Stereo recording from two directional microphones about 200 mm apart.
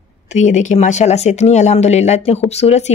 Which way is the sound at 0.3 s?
35° left (ahead or behind).